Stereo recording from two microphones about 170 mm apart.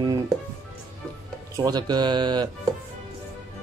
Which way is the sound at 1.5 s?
25° right (ahead or behind).